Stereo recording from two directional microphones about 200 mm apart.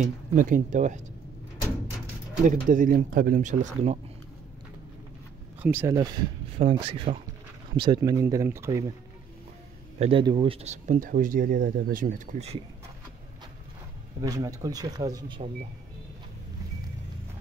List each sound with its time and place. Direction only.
0.0 s speech: 40° right (ahead or behind)
2.7 s speech: 40° right (ahead or behind)
5.6 s speech: 10° right (ahead or behind)
6.6 s speech: 30° right (ahead or behind); by 8.9 s 15° right (ahead or behind)
9.9 s speech: 30° right (ahead or behind)
14.2 s speech: 15° right (ahead or behind)